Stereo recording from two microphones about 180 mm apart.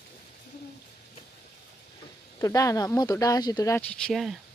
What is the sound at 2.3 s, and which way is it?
Speech, 20° left (ahead or behind).